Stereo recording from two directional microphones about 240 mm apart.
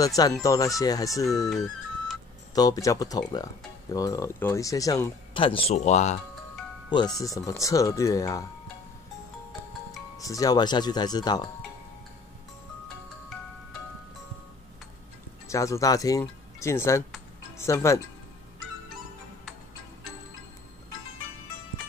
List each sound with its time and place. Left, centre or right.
0.0 s speech: centre
2.5 s speech: centre
7.2 s speech: centre
10.1 s speech: centre
15.4 s speech: centre